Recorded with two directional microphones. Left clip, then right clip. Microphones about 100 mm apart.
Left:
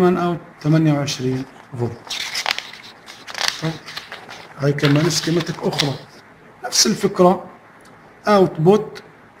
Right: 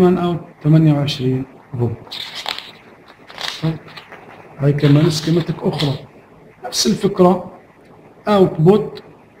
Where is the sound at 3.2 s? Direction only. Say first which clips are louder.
Left 2 dB; 20° left (ahead or behind).